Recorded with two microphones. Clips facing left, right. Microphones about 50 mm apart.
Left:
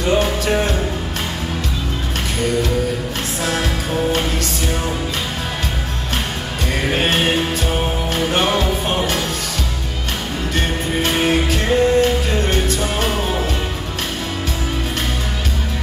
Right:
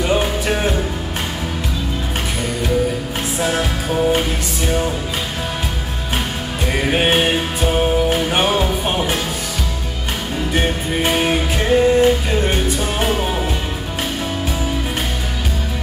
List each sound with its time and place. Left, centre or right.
0.0 s music: centre
3.4 s music: centre
6.9 s music: centre
10.5 s music: centre